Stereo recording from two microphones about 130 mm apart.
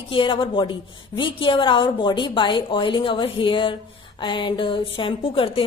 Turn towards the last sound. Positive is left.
turn(degrees=45)  # may be behind; listen again after turning